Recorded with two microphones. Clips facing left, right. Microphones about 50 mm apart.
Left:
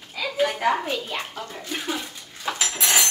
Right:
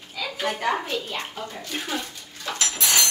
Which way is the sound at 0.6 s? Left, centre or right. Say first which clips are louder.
Left 2 dB; centre.